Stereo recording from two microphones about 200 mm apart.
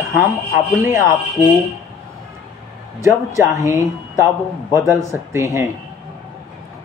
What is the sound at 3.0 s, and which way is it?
Speech, 15° right (ahead or behind).